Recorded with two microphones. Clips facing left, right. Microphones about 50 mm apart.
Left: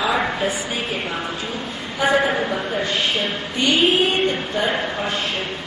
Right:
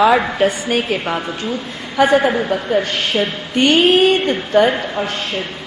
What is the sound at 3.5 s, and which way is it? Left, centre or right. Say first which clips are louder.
Music: right 6 dB; right.